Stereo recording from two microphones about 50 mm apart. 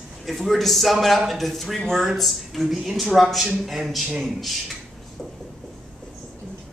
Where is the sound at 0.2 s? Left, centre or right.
Centre.